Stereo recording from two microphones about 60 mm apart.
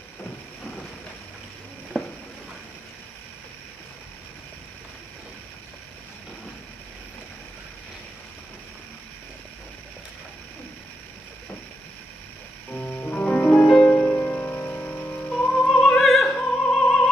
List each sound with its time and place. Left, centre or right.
2.0 s a sound: centre
12.7 s music: left
15.6 s opera: centre